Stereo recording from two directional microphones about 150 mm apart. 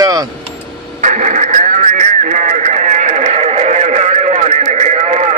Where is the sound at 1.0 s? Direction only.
55° right (ahead or behind).